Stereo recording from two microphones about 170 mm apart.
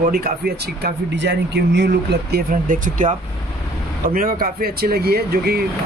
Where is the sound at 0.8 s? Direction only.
90° right.